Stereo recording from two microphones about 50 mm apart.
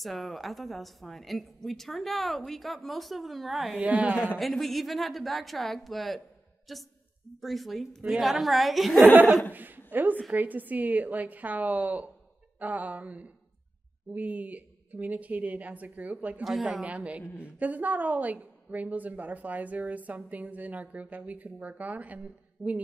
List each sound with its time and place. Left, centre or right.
0.0 s a woman's voice: centre
3.7 s a woman's voice: right
4.4 s a woman's voice: centre
9.0 s a woman's voice: right